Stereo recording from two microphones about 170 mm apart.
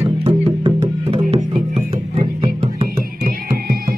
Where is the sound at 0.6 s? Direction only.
35° right (ahead or behind).